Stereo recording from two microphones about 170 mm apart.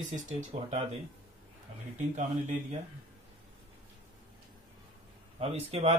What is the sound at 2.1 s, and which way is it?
Speech, 45° right (ahead or behind).